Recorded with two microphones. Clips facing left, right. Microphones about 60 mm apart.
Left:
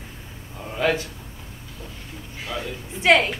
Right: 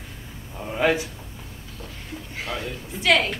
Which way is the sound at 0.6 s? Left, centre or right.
Centre.